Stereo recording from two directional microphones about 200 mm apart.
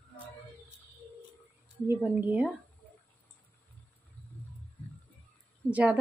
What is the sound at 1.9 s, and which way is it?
Speech, 10° right (ahead or behind).